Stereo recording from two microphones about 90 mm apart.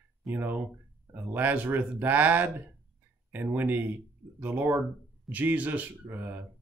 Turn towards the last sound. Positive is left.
turn(degrees=-20)  # may be behind; listen again after turning